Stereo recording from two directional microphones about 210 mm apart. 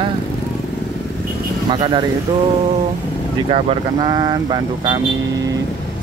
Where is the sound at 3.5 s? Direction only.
25° right (ahead or behind).